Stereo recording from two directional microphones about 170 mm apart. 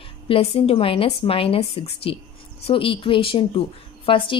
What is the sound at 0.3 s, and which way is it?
Speech, 35° left (ahead or behind).